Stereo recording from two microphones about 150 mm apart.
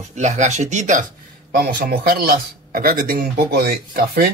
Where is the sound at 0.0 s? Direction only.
50° right (ahead or behind).